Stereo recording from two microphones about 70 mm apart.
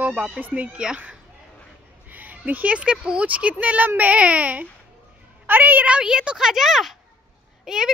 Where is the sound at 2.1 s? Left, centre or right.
Right.